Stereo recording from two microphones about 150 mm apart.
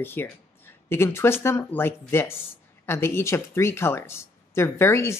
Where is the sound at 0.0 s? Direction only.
15° left (ahead or behind).